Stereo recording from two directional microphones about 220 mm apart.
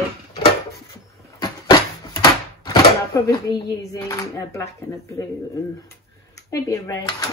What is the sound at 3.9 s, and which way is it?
Speech, 15° left (ahead or behind).